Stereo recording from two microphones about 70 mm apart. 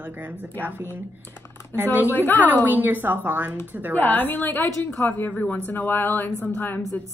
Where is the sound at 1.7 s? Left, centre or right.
Right.